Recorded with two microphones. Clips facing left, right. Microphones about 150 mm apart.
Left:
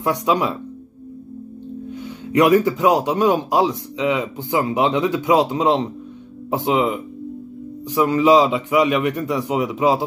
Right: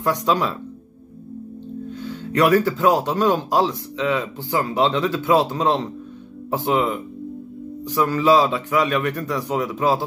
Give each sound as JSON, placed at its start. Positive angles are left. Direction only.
{"t": 0.0, "sound": "speech", "side_deg": 15}
{"t": 1.9, "sound": "speech", "side_deg": 15}